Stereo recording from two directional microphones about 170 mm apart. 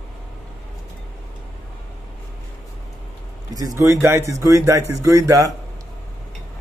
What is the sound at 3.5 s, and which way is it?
Speech, 20° right (ahead or behind).